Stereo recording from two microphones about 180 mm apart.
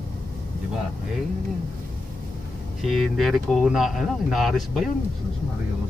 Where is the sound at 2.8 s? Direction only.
Centre (ahead or behind).